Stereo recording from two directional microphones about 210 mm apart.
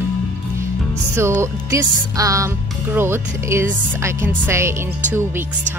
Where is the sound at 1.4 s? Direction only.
15° right (ahead or behind).